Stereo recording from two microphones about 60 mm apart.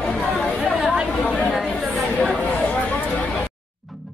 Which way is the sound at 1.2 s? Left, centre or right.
Centre.